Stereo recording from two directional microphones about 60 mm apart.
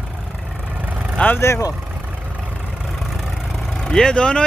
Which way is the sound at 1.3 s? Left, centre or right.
Left.